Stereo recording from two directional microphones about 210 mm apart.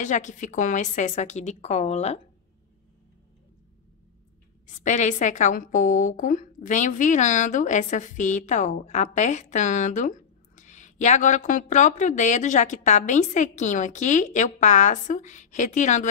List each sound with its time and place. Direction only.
0.0 s a woman's voice: 35° left (ahead or behind)
4.6 s a woman's voice: 35° left (ahead or behind)